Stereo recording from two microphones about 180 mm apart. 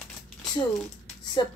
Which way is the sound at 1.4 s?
25° left (ahead or behind).